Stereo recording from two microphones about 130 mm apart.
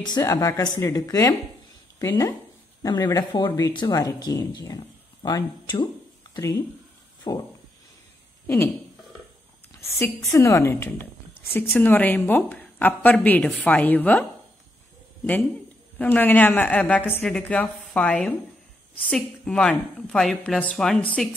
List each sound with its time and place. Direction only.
0.0 s speech: 30° left (ahead or behind)
7.3 s a sound: 35° left (ahead or behind)
9.8 s a woman's voice: 20° left (ahead or behind)
16.0 s a woman's voice: 15° left (ahead or behind)